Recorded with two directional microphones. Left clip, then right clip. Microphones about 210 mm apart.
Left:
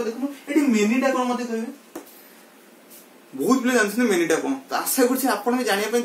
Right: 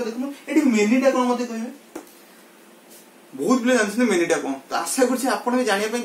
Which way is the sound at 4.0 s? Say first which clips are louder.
Even; 20° left (ahead or behind).